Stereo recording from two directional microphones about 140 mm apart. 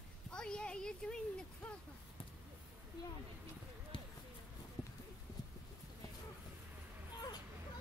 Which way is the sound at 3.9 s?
35° left (ahead or behind).